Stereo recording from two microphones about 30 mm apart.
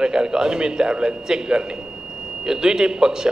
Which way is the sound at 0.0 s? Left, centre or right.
Right.